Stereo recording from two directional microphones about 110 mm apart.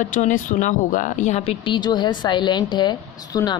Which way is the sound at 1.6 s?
45° left (ahead or behind).